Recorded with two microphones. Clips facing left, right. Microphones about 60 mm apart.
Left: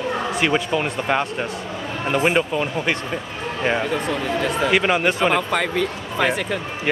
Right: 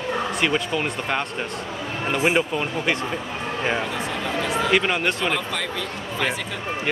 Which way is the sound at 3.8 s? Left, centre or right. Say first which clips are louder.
Left 4 dB; left.